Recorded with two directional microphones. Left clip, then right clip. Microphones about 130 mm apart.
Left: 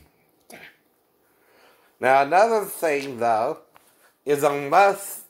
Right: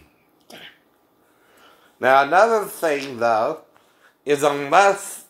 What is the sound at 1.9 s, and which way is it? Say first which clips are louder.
Speech: right 2 dB; 65° left (ahead or behind).